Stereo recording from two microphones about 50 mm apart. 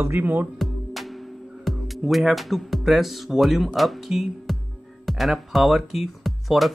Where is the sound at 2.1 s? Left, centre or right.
Centre.